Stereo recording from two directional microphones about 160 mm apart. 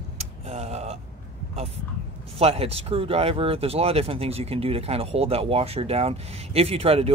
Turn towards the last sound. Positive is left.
turn(degrees=-35)  # may be behind; listen again after turning